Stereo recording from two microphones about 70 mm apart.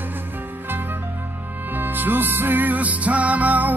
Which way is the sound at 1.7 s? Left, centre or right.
Right.